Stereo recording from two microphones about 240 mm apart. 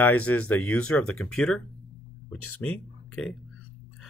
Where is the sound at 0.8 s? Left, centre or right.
Left.